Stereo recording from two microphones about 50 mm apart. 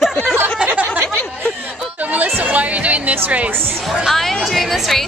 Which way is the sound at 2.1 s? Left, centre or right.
Right.